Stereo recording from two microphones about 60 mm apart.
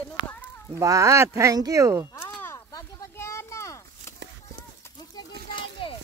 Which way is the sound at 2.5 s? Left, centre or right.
Left.